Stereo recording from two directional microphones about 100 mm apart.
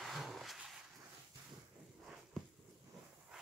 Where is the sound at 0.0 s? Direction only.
Centre (ahead or behind).